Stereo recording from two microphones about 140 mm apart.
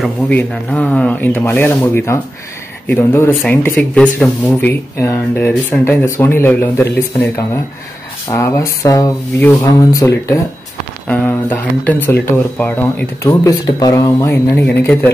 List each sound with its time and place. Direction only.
0.3 s speech: 10° left (ahead or behind)